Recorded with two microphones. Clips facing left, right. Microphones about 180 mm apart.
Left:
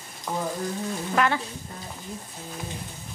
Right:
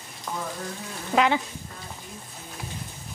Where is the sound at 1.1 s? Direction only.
15° right (ahead or behind).